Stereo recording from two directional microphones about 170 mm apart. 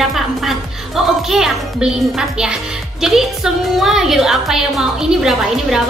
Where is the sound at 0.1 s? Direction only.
Centre (ahead or behind).